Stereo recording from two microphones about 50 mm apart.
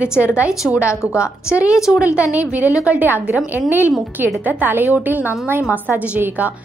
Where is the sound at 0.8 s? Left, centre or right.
Left.